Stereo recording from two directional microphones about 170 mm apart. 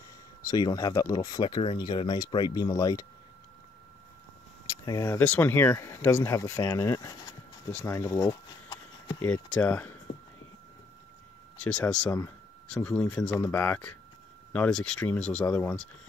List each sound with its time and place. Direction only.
0.4 s speech: 20° left (ahead or behind)
4.8 s speech: 15° left (ahead or behind)
7.7 s a sound: 15° left (ahead or behind)
9.2 s speech: 5° left (ahead or behind)
11.5 s speech: 5° left (ahead or behind)